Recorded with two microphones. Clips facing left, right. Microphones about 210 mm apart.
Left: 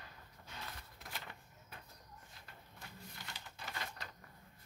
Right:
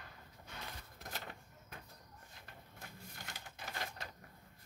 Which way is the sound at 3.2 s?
45° right (ahead or behind).